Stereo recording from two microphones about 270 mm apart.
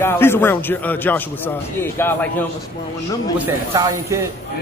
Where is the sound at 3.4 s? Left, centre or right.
Centre.